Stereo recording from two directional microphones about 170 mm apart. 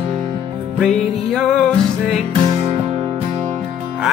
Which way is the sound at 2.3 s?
35° right (ahead or behind).